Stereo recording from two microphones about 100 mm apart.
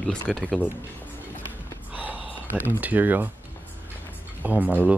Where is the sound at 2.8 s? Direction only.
15° right (ahead or behind).